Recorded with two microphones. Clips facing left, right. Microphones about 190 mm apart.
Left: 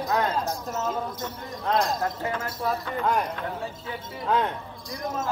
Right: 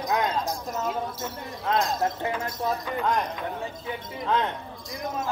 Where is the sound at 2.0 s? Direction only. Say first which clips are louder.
Right 1 dB; 20° right (ahead or behind).